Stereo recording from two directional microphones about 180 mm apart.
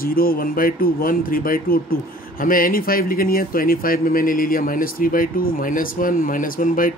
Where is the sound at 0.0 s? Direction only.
55° left (ahead or behind).